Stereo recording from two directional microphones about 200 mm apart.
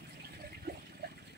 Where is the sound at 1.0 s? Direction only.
50° right (ahead or behind).